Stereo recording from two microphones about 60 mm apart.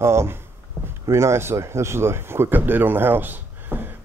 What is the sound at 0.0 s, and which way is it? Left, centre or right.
Speech, right.